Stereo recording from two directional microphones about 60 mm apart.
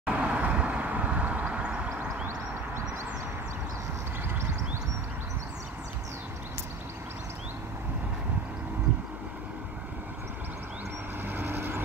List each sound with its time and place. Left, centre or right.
0.0 s vehicle: centre
11.2 s vehicle: right